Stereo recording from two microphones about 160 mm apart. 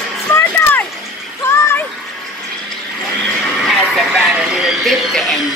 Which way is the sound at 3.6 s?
Centre (ahead or behind).